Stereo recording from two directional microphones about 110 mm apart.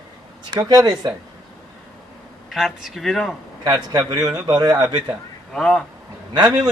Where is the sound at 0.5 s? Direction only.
35° right (ahead or behind).